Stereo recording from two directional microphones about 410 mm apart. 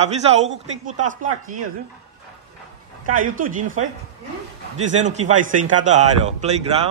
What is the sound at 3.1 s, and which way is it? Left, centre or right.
Speech, centre.